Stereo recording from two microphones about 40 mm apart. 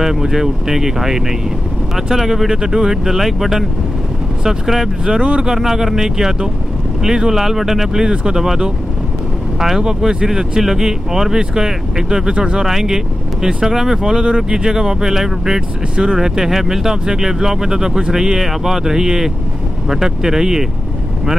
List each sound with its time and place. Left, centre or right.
0.0 s speech: centre
2.5 s speech: centre
3.1 s speech: centre
5.0 s speech: right
5.5 s speech: centre
8.1 s speech: right
12.6 s speech: centre
14.2 s speech: right
16.0 s speech: right
16.3 s speech: centre